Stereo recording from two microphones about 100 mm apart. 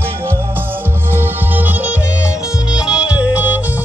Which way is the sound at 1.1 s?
20° right (ahead or behind).